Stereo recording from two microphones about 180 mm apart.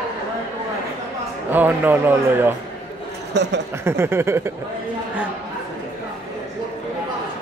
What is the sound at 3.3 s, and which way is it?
Speech, 70° right (ahead or behind).